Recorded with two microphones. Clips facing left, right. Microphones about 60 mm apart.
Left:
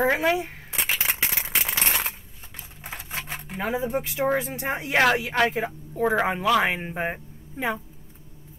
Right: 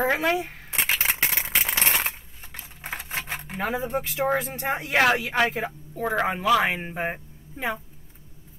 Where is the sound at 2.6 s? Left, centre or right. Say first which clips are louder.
Right 4 dB; right.